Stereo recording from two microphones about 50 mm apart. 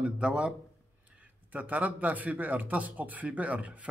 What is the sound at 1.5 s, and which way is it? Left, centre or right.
A man's voice, right.